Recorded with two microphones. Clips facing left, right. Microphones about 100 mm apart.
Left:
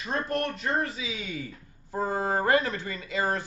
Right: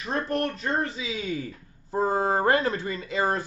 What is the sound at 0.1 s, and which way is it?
A man's voice, 30° right (ahead or behind).